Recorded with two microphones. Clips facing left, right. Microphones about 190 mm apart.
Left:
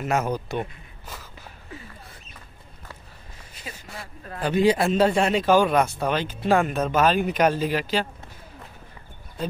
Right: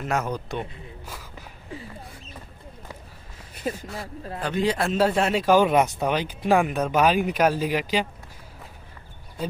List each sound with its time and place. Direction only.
0.0 s a man's voice: 5° left (ahead or behind)
3.5 s speech: 50° right (ahead or behind)
4.4 s a man's voice: 5° left (ahead or behind); by 8.1 s 15° right (ahead or behind)